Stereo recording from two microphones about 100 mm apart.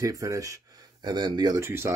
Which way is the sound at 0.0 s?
35° right (ahead or behind).